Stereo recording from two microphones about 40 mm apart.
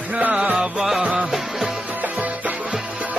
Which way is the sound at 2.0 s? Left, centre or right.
Right.